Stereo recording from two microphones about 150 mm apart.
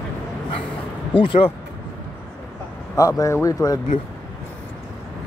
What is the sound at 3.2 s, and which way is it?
Speech, 20° left (ahead or behind).